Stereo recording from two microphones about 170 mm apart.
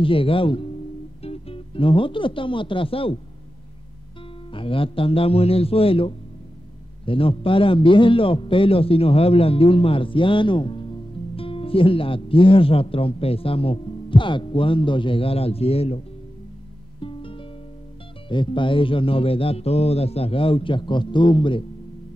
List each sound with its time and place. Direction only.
0.0 s a man's voice: 30° left (ahead or behind)
4.5 s a man's voice: 30° left (ahead or behind)
17.0 s music: 30° left (ahead or behind)
18.3 s a man's voice: 30° left (ahead or behind)